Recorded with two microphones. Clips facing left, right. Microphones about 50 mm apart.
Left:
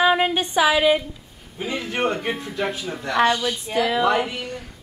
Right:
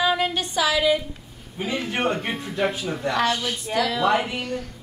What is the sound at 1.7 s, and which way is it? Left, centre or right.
Speech, centre.